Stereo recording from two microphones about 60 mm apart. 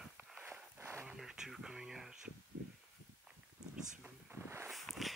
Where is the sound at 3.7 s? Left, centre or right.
Centre.